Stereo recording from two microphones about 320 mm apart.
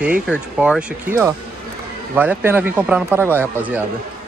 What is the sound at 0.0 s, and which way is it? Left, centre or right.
Speech, centre.